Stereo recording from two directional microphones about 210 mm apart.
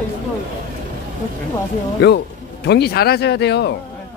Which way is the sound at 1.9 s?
55° left (ahead or behind).